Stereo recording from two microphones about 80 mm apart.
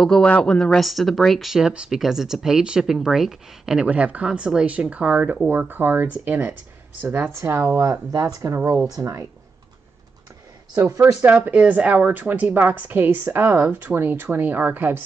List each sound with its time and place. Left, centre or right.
0.0 s speech: centre
0.7 s a woman's voice: centre; by 7.8 s right
7.8 s speech: right
8.5 s speech: right
8.9 s speech: right
10.8 s speech: right
11.2 s a woman's voice: centre